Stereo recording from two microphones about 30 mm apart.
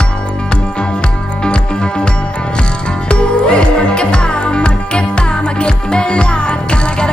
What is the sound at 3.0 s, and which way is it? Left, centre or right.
Music, left.